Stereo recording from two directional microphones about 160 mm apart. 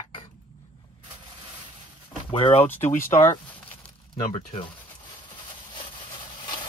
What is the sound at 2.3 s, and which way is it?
Speech, 35° left (ahead or behind).